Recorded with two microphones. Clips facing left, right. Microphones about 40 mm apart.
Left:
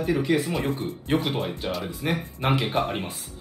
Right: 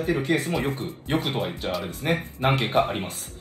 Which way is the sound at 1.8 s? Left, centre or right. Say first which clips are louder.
Right 2 dB; right.